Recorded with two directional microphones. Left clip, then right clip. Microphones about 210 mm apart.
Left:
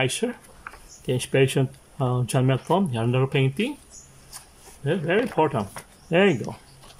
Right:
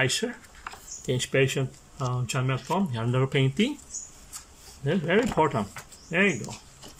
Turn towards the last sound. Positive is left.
turn(degrees=15)  # may be behind; listen again after turning